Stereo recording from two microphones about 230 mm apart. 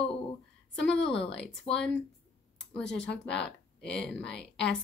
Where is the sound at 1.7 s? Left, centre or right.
Left.